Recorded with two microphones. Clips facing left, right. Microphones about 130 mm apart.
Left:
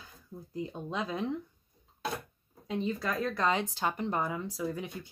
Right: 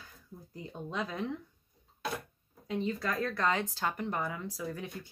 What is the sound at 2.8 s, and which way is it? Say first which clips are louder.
Speech: left 2 dB; 15° left (ahead or behind).